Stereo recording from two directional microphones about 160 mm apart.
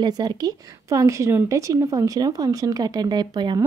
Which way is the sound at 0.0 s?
25° right (ahead or behind).